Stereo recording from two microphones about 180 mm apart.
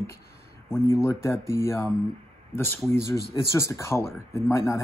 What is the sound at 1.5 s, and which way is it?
Speech, 15° left (ahead or behind).